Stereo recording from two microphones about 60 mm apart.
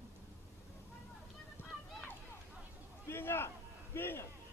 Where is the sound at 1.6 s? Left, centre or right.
Left.